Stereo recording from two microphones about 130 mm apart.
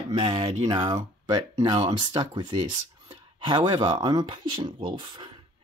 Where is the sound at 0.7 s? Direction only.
35° right (ahead or behind).